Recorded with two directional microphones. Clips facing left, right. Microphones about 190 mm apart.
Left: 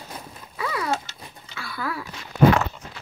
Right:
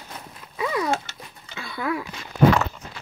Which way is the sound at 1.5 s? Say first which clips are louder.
Right 4 dB; 20° right (ahead or behind).